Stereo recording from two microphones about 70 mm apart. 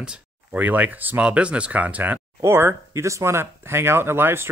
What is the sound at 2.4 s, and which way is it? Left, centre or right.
Speech, right.